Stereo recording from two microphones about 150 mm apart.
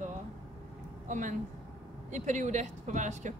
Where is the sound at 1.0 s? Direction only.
55° right (ahead or behind).